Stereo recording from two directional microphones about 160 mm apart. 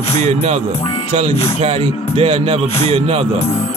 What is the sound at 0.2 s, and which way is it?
Speech, 45° right (ahead or behind).